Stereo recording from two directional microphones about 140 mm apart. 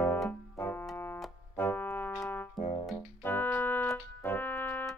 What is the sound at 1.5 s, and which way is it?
Brass instrument, 15° left (ahead or behind).